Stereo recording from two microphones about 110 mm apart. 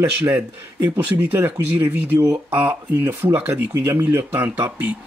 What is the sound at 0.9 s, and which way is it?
Speech, 20° right (ahead or behind).